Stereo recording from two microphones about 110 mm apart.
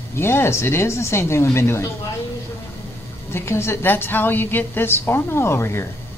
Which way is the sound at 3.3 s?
20° left (ahead or behind).